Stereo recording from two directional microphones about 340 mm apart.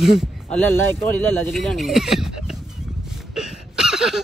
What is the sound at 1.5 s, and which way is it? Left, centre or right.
Speech, centre.